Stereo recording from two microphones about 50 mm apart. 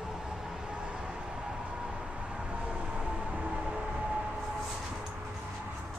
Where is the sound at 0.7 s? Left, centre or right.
Centre.